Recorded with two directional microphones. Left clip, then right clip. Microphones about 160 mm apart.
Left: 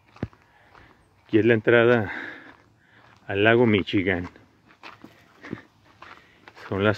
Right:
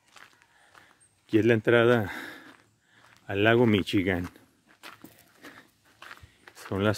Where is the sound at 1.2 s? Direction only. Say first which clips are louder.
Left 4 dB; 25° right (ahead or behind).